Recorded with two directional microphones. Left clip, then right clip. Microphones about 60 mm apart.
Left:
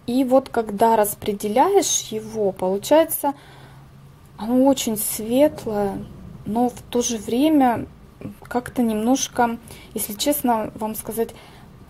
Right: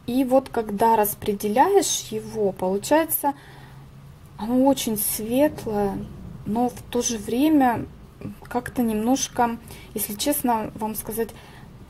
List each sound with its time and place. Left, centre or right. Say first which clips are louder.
0.0 s speech: left 2 dB; left
4.4 s speech: left 2 dB; left